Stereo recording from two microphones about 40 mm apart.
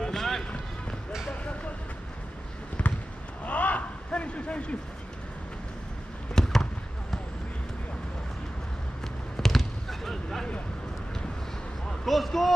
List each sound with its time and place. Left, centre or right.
0.0 s run: centre
2.8 s basketball bounce: left
3.4 s a sound: left
6.3 s basketball bounce: centre
9.4 s basketball bounce: centre
11.9 s a sound: centre